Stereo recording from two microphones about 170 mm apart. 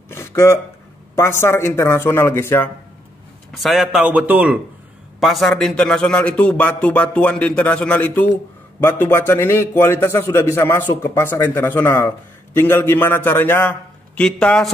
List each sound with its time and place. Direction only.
0.1 s a man's voice: 15° left (ahead or behind)
3.5 s a man's voice: centre (ahead or behind)